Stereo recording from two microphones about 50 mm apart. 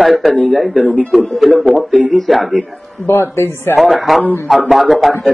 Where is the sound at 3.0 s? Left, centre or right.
Left.